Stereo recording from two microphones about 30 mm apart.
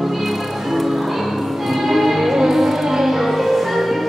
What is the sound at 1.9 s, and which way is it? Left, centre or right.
Music, centre.